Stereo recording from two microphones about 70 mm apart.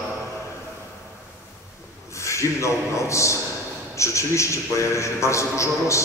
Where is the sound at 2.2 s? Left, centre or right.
Left.